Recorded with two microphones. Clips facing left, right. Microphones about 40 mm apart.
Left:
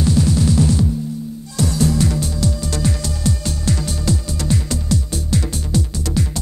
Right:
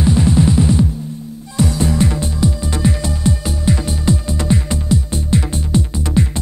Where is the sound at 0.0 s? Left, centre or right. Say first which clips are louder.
Right 3 dB; right.